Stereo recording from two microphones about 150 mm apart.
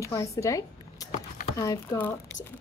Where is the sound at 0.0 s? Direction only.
20° left (ahead or behind).